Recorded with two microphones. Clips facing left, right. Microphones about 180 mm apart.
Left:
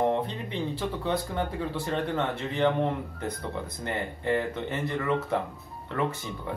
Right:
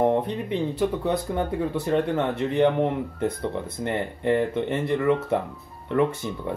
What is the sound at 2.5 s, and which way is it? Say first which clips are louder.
Speech: right 4 dB; 20° right (ahead or behind).